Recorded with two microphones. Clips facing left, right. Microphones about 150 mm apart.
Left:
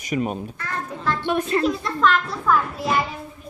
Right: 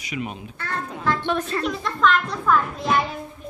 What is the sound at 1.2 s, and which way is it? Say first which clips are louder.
Speech: left 3 dB; 10° left (ahead or behind).